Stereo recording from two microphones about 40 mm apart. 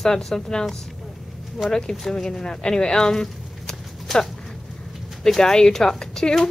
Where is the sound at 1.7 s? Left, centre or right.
Centre.